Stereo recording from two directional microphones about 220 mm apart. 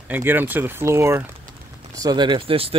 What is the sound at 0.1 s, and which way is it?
Speech, 10° right (ahead or behind).